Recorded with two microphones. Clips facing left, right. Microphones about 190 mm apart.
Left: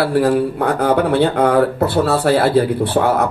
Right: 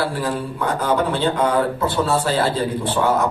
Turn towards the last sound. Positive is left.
turn(degrees=65)  # may be behind; listen again after turning